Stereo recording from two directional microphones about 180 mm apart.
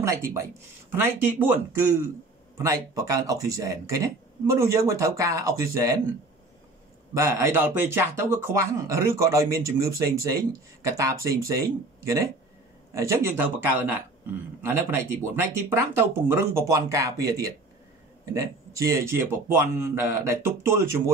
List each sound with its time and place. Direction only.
0.0 s speech: 15° right (ahead or behind)
7.2 s speech: 15° right (ahead or behind)